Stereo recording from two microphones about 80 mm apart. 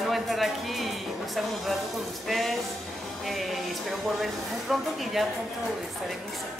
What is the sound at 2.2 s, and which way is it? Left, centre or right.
Speech, centre.